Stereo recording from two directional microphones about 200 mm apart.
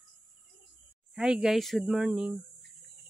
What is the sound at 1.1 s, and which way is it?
Speech, 5° right (ahead or behind).